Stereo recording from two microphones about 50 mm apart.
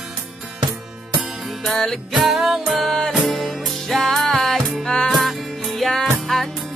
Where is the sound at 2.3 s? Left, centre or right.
Centre.